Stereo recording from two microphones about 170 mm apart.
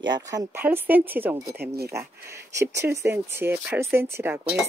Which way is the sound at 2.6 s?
15° right (ahead or behind).